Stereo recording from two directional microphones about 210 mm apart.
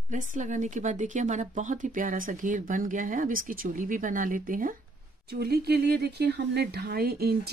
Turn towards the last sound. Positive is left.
turn(degrees=-45)  # may be behind; listen again after turning